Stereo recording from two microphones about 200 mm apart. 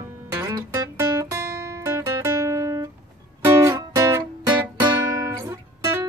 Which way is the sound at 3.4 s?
15° right (ahead or behind).